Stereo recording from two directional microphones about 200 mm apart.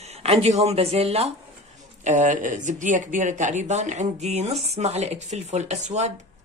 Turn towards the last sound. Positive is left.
turn(degrees=-35)  # may be behind; listen again after turning